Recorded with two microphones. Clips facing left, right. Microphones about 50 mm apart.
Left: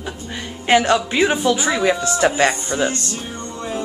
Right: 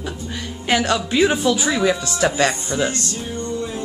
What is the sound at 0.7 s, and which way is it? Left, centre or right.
A woman's voice, centre.